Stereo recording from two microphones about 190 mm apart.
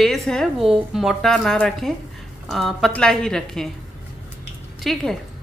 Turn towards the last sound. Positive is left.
turn(degrees=0)  # may be behind; listen again after turning